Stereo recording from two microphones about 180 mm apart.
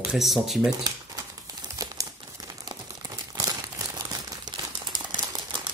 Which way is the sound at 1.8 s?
20° right (ahead or behind).